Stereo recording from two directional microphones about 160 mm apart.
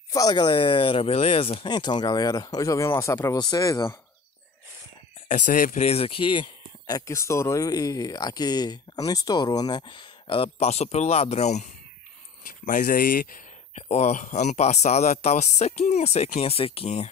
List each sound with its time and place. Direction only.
0.1 s speech: 25° left (ahead or behind)
5.3 s speech: 55° left (ahead or behind)
5.9 s speech: 35° left (ahead or behind)
12.4 s speech: 60° left (ahead or behind)
13.8 s speech: 45° left (ahead or behind)